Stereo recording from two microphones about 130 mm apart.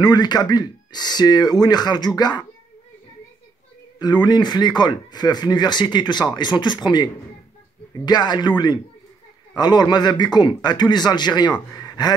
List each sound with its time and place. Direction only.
0.0 s speech: 30° left (ahead or behind)
4.0 s speech: 30° left (ahead or behind)
11.8 s gasp: 30° left (ahead or behind)